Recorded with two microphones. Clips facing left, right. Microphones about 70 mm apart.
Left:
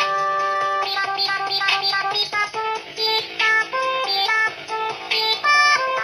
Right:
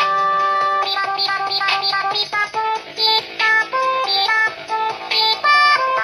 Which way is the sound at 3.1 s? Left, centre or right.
Centre.